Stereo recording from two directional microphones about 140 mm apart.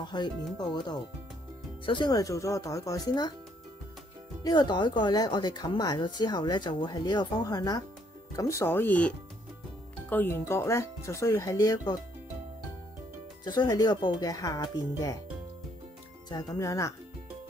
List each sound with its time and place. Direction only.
0.0 s speech: 30° left (ahead or behind)
4.4 s speech: 30° left (ahead or behind)
13.4 s speech: 30° left (ahead or behind)
16.3 s speech: 25° left (ahead or behind)